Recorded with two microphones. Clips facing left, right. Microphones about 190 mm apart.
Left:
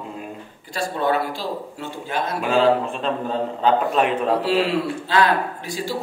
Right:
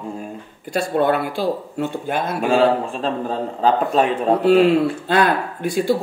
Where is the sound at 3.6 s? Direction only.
35° right (ahead or behind).